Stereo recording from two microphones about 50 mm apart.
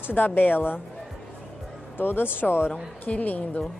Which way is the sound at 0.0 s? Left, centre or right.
Left.